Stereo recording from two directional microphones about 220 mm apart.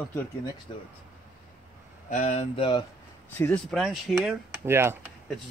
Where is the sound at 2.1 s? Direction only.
30° left (ahead or behind).